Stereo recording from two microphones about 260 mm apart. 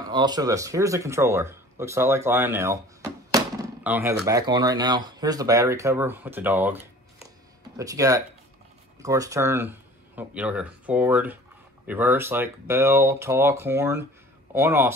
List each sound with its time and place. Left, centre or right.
0.1 s speech: centre